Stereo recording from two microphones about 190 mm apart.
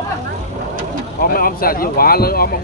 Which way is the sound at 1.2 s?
50° left (ahead or behind).